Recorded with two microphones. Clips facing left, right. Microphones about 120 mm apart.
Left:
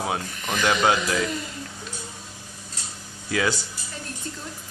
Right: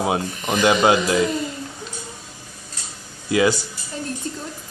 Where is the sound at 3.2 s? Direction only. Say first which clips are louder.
Right 7 dB; 10° right (ahead or behind).